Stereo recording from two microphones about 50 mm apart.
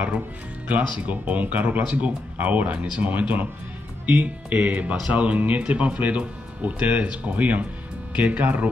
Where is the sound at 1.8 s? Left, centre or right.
Right.